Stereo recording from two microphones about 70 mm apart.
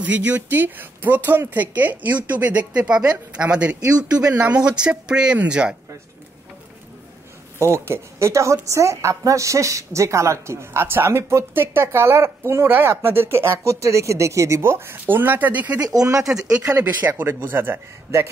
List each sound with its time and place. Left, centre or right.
0.0 s a man's voice: right
7.5 s a woman's voice: right
15.8 s speech: right
16.2 s speech: centre
17.2 s a woman's voice: right